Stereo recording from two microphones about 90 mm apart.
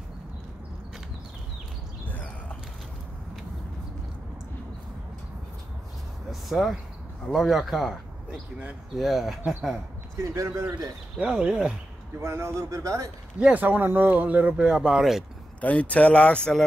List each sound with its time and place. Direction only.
2.0 s a sound: 20° left (ahead or behind)
6.5 s speech: 5° right (ahead or behind)
10.1 s speech: 35° right (ahead or behind)
11.1 s speech: 10° right (ahead or behind)
12.2 s speech: 30° right (ahead or behind)
13.4 s speech: 15° right (ahead or behind)
15.6 s speech: 15° left (ahead or behind)